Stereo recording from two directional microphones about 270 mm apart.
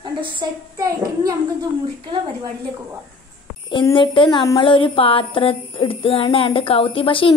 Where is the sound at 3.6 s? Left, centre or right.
Centre.